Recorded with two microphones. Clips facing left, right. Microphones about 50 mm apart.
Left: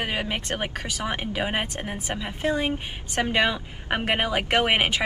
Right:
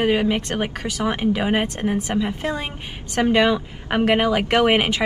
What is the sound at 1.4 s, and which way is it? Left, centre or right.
Speech, centre.